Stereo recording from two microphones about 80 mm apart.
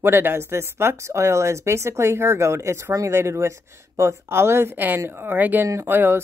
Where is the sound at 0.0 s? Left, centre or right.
Right.